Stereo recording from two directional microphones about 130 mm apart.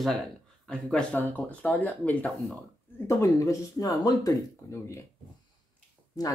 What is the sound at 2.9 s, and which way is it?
Speech, 20° left (ahead or behind).